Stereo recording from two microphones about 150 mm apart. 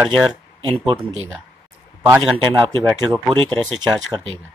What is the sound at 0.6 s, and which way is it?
Speech, 35° right (ahead or behind).